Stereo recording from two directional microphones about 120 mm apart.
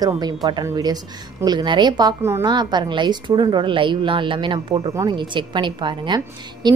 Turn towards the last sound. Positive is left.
turn(degrees=-40)  # may be behind; listen again after turning